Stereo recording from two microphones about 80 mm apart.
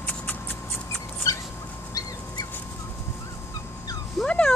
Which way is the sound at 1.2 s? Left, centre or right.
Left.